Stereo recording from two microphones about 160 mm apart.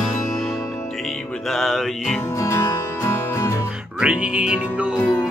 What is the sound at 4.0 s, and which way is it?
Music, 10° right (ahead or behind).